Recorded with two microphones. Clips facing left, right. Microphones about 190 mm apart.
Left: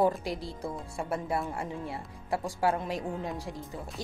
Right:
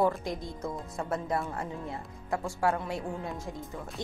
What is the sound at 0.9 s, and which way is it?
Speech, 10° left (ahead or behind).